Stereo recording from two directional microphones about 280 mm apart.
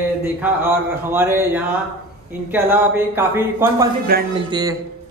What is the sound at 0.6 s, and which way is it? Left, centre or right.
A man's voice, centre.